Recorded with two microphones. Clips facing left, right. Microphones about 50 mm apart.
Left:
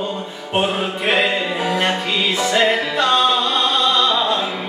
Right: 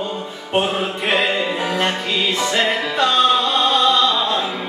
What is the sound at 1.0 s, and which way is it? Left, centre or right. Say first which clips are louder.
Music: left 1 dB; centre.